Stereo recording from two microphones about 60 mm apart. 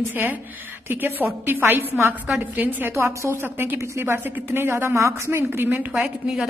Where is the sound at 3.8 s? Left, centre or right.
Right.